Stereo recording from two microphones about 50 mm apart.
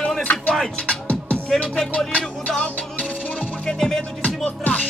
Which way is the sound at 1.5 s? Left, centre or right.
Centre.